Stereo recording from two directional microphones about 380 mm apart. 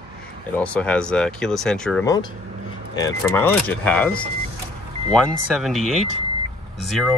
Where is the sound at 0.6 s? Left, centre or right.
Centre.